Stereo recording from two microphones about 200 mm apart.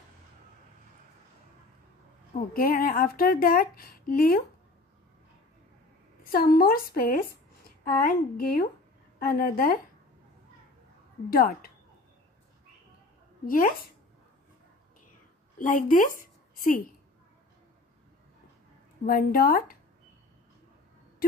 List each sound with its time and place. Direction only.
2.5 s speech: 45° left (ahead or behind)
6.3 s speech: 50° left (ahead or behind)
11.2 s speech: 45° left (ahead or behind)
13.5 s speech: 45° left (ahead or behind)
15.6 s speech: 40° left (ahead or behind)
16.2 s a sound: 40° left (ahead or behind)
19.0 s speech: 45° left (ahead or behind)